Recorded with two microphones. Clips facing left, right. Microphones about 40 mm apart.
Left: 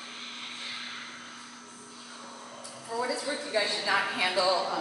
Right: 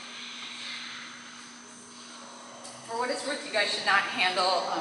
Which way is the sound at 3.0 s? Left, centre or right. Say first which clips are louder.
Even; right.